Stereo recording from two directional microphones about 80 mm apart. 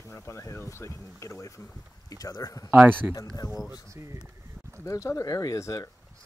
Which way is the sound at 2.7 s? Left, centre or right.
Right.